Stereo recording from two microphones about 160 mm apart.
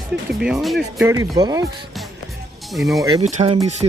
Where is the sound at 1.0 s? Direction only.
25° right (ahead or behind).